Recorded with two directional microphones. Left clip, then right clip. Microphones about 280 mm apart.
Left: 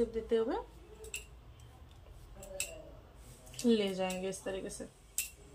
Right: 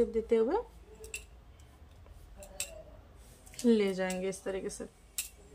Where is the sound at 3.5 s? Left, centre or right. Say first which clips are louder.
Right 3 dB; centre.